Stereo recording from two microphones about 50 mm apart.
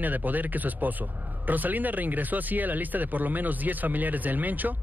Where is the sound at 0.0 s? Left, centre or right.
Right.